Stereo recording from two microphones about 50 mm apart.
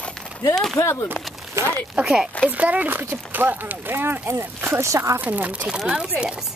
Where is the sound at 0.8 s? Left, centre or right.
Left.